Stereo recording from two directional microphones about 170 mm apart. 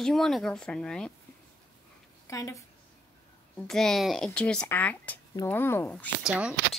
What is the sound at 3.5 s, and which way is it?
A woman's voice, centre (ahead or behind).